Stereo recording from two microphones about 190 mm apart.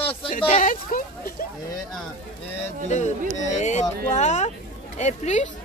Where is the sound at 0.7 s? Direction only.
45° left (ahead or behind).